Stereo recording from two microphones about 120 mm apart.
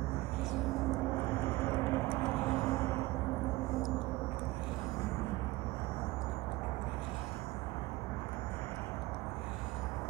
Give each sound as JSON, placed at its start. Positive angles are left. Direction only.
{"t": 1.1, "sound": "vehicle", "side_deg": 20}